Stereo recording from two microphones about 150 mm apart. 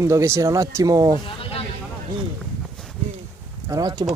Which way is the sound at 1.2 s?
35° left (ahead or behind).